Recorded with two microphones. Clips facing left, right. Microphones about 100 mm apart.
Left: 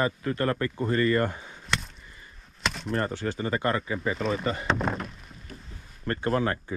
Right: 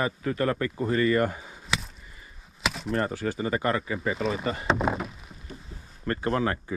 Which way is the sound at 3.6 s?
30° left (ahead or behind).